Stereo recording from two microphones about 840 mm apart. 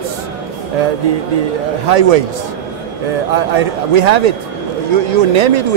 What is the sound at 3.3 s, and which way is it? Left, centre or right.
A man's voice, right.